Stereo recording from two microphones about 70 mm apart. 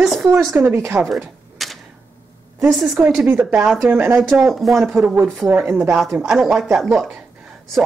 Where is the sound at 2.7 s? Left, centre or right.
Centre.